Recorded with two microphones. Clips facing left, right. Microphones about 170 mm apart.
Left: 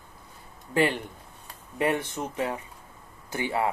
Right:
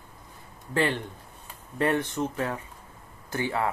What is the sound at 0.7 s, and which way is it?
Speech, 15° left (ahead or behind).